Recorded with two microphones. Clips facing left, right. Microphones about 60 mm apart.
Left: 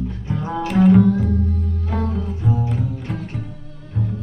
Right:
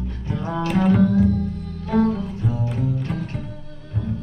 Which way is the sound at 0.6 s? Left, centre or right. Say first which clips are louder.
Left 5 dB; centre.